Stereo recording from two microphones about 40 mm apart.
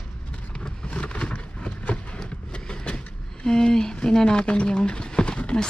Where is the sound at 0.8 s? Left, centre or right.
Left.